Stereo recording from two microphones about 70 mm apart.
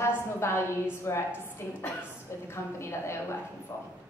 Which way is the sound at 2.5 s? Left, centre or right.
Left.